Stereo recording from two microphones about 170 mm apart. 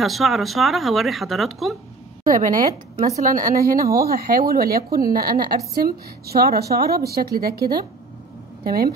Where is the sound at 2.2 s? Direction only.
50° right (ahead or behind).